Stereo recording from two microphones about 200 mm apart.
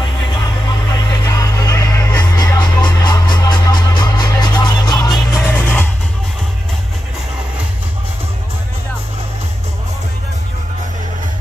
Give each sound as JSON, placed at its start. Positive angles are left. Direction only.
{"t": 0.0, "sound": "music", "side_deg": 20}